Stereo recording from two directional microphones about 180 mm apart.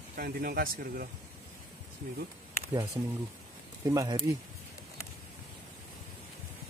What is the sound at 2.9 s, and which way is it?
Speech, 20° right (ahead or behind).